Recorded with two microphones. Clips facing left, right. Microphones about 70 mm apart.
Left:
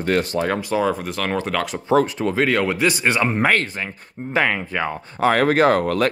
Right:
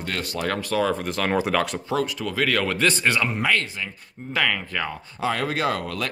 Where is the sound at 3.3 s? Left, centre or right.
Left.